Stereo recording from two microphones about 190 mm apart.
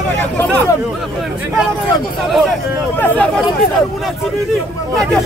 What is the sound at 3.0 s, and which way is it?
Speech, 5° left (ahead or behind).